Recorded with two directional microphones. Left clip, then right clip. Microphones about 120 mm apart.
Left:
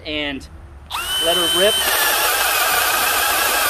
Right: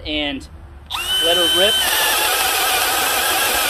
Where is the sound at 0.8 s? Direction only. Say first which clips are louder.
Right 2 dB; 25° left (ahead or behind).